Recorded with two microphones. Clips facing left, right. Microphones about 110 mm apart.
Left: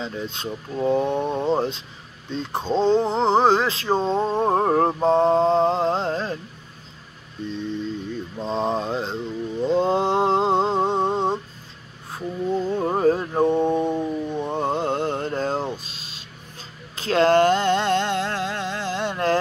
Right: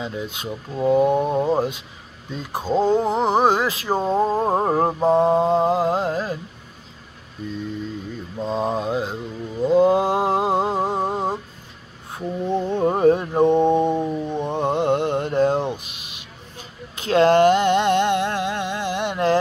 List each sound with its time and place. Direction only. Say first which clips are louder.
0.0 s speech: right 1 dB; 10° right (ahead or behind)
8.4 s mantra: right 1 dB; 5° right (ahead or behind)
12.1 s speech: right 1 dB; 20° right (ahead or behind)
13.3 s mantra: right 3 dB; 15° right (ahead or behind)